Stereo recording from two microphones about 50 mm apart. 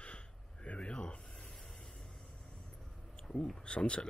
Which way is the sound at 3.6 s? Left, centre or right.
Left.